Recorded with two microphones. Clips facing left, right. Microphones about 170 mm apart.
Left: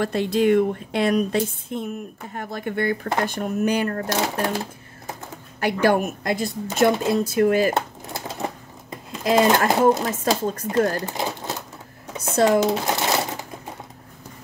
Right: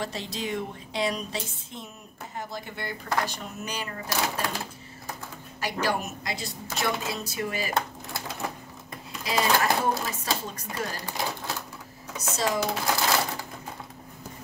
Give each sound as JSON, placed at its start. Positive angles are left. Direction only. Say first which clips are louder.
{"t": 0.0, "sound": "a woman's voice", "louder": "left 13 dB", "side_deg": 55}
{"t": 5.6, "sound": "a woman's voice", "louder": "left 9 dB", "side_deg": 55}
{"t": 7.7, "sound": "typewriter", "louder": "left 3 dB", "side_deg": 25}
{"t": 9.2, "sound": "a woman's voice", "louder": "left 7 dB", "side_deg": 50}
{"t": 11.1, "sound": "speech", "louder": "left 4 dB", "side_deg": 20}
{"t": 12.2, "sound": "speech", "louder": "left 11 dB", "side_deg": 55}
{"t": 12.8, "sound": "a sound", "louder": "left 3 dB", "side_deg": 20}